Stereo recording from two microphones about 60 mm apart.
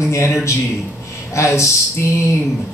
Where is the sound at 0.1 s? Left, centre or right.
Left.